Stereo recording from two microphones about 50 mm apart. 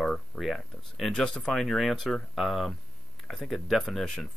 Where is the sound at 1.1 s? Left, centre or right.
Centre.